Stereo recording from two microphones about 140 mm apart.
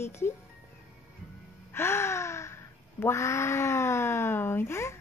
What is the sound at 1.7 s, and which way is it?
Gasp, 15° left (ahead or behind).